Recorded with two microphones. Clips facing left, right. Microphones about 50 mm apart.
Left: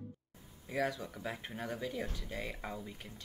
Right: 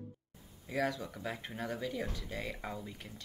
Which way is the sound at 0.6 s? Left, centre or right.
Centre.